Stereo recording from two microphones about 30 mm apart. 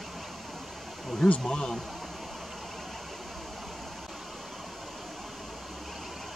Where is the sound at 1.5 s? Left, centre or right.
Left.